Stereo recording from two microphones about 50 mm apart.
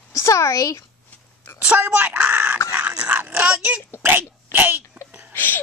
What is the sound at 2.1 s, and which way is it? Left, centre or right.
Speech, right.